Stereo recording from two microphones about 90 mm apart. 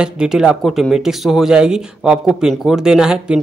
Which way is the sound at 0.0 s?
5° right (ahead or behind).